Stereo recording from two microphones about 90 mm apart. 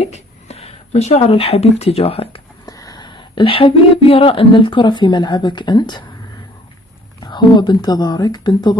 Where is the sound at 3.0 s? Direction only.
60° left (ahead or behind).